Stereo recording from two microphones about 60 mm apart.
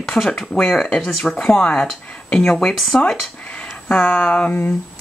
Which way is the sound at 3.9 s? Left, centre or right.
Left.